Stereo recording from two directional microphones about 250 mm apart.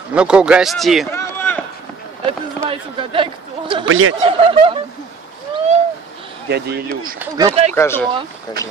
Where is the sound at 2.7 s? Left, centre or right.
Centre.